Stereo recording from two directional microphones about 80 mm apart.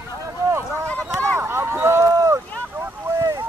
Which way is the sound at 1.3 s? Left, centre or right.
Right.